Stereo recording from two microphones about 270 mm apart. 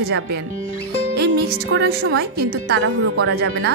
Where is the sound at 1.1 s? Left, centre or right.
Right.